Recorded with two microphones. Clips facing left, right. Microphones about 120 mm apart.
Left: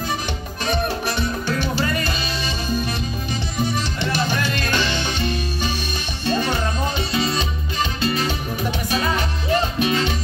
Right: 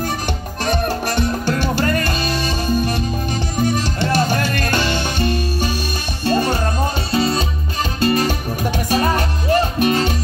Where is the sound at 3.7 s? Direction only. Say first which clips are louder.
Right 5 dB; 50° right (ahead or behind).